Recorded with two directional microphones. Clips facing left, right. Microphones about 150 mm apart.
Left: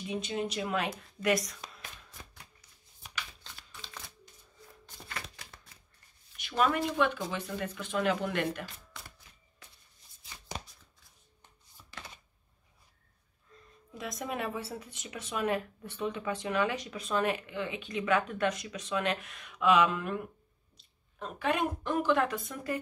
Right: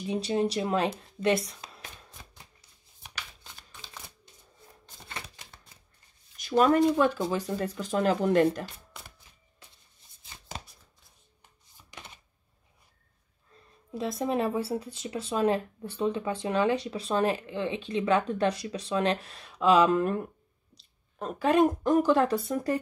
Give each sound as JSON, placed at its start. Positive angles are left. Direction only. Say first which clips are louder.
{"t": 0.0, "sound": "speech", "louder": "right 7 dB", "side_deg": -35}
{"t": 5.0, "sound": "shuffling cards", "louder": "right 1 dB", "side_deg": -25}
{"t": 6.3, "sound": "a sound", "louder": "right 7 dB", "side_deg": -40}
{"t": 7.0, "sound": "speech", "louder": "right 5 dB", "side_deg": -40}
{"t": 11.9, "sound": "a sound", "louder": "even", "side_deg": -15}
{"t": 13.9, "sound": "speech", "louder": "right 8 dB", "side_deg": -30}